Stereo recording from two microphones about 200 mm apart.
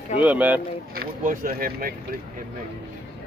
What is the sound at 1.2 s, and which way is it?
Speech, 45° right (ahead or behind).